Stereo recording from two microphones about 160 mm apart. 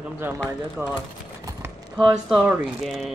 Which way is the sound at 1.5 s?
25° right (ahead or behind).